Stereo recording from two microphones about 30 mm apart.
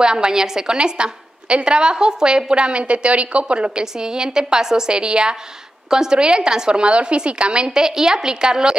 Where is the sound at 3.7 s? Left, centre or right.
Right.